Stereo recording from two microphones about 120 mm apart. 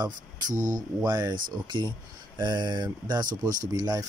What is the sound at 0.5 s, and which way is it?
Speech, 90° right.